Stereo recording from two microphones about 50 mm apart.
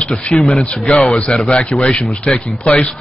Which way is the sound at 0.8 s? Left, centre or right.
Centre.